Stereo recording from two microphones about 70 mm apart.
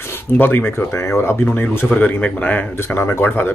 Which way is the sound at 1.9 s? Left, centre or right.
Left.